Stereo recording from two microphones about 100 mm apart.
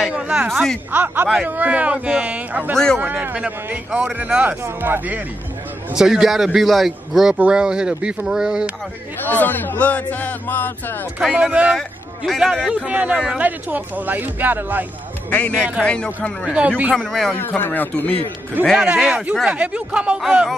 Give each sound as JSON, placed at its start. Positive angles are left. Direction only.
{"t": 0.1, "sound": "a sound", "side_deg": -10}
{"t": 0.5, "sound": "speech", "side_deg": 0}
{"t": 0.9, "sound": "speech", "side_deg": -20}
{"t": 5.9, "sound": "speech", "side_deg": -5}
{"t": 9.2, "sound": "speech", "side_deg": 20}
{"t": 11.3, "sound": "speech", "side_deg": -10}
{"t": 15.2, "sound": "a man's voice", "side_deg": 15}
{"t": 16.4, "sound": "speech", "side_deg": -10}
{"t": 16.9, "sound": "speech", "side_deg": 0}
{"t": 17.4, "sound": "a man's voice", "side_deg": 20}
{"t": 18.9, "sound": "speech", "side_deg": -10}